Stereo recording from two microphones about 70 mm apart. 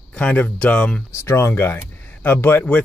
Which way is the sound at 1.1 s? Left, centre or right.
Left.